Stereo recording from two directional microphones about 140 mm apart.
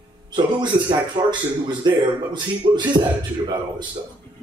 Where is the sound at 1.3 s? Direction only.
30° right (ahead or behind).